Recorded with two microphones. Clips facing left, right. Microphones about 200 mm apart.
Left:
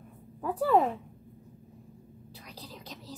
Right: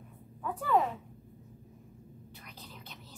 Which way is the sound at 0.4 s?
35° left (ahead or behind).